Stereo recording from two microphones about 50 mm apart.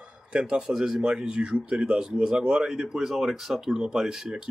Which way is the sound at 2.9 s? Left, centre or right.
Centre.